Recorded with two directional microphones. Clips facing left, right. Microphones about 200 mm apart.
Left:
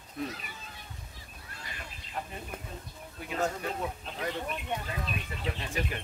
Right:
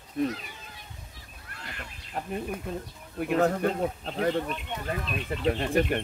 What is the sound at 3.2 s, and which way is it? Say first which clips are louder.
Speech: right 8 dB; 60° right (ahead or behind).